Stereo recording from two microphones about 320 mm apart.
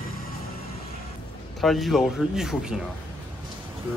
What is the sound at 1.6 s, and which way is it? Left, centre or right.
Speech, centre.